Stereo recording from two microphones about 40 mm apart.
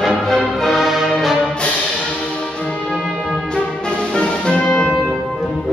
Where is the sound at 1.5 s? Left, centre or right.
Left.